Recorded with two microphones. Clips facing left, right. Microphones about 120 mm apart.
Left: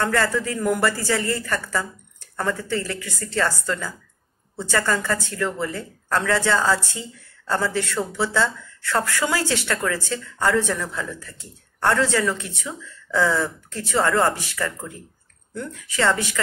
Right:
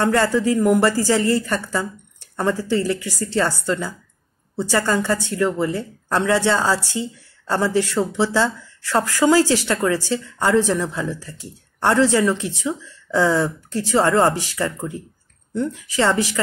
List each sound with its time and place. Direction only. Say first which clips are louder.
0.0 s speech: right 4 dB; 25° right (ahead or behind)
3.3 s speech: right 3 dB; 20° right (ahead or behind)
14.3 s speech: right 5 dB; 35° right (ahead or behind)
14.6 s speech: right 4 dB; 25° right (ahead or behind)